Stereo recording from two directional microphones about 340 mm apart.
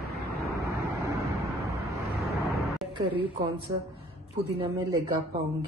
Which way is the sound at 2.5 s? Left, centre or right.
Centre.